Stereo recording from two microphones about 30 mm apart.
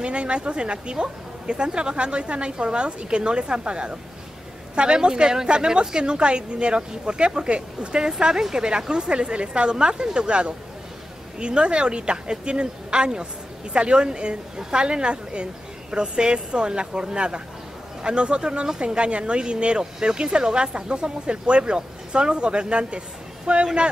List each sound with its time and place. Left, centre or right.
0.0 s a woman's voice: right
19.8 s speech: right